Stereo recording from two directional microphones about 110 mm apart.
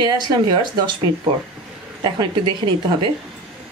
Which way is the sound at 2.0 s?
45° right (ahead or behind).